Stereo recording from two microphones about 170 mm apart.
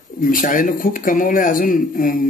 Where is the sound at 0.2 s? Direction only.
50° left (ahead or behind).